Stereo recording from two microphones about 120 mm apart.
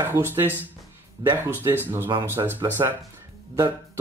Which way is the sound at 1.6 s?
20° right (ahead or behind).